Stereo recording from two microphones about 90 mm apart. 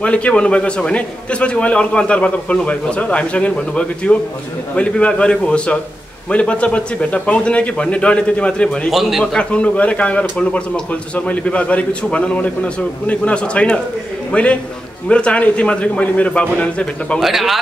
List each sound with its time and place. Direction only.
0.0 s a man's voice: 15° left (ahead or behind)
17.2 s speech: centre (ahead or behind)